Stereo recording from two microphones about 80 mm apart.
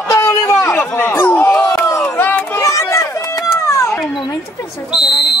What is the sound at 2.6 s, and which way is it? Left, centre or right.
Run, left.